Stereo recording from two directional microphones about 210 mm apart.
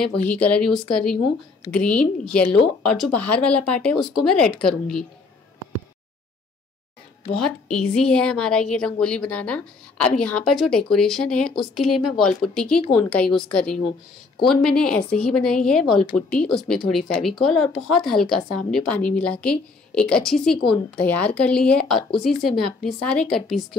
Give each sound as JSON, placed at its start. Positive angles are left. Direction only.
{"t": 0.0, "sound": "speech", "side_deg": 5}
{"t": 7.4, "sound": "speech", "side_deg": 5}